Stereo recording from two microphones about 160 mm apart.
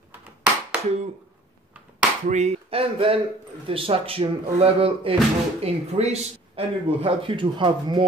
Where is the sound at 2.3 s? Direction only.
45° right (ahead or behind); by 8.0 s 30° right (ahead or behind).